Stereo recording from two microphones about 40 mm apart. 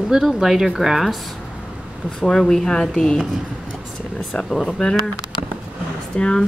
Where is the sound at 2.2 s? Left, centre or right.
Centre.